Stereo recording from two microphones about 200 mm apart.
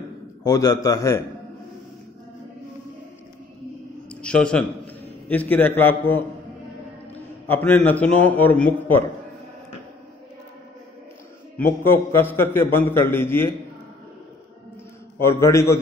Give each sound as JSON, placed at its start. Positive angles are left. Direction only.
{"t": 0.4, "sound": "a man's voice", "side_deg": 20}
{"t": 4.1, "sound": "a man's voice", "side_deg": 5}
{"t": 7.4, "sound": "a man's voice", "side_deg": 10}
{"t": 11.5, "sound": "a man's voice", "side_deg": 10}
{"t": 15.1, "sound": "a man's voice", "side_deg": 15}